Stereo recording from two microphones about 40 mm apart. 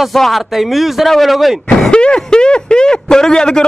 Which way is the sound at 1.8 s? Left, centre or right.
Left.